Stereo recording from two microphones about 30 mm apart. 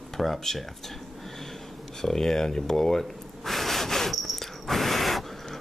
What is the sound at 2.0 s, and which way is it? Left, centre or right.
Speech, centre.